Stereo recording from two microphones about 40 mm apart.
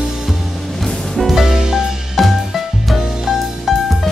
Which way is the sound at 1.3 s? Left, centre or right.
Centre.